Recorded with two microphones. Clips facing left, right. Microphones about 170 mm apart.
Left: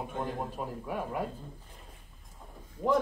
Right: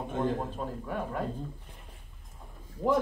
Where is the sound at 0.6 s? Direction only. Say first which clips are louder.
Right 1 dB; 10° left (ahead or behind).